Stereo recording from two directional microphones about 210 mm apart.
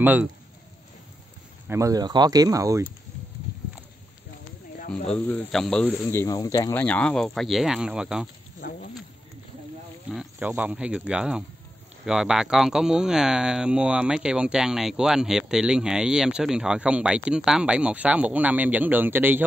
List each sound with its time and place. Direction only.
0.0 s speech: 5° right (ahead or behind)
1.7 s speech: 15° right (ahead or behind)
5.0 s speech: 5° left (ahead or behind)
8.5 s speech: 45° left (ahead or behind)
10.0 s speech: 5° right (ahead or behind)